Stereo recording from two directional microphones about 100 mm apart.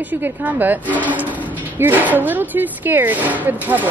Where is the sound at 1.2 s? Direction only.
15° right (ahead or behind).